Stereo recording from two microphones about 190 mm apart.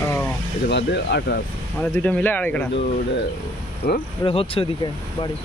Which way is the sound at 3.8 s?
50° left (ahead or behind).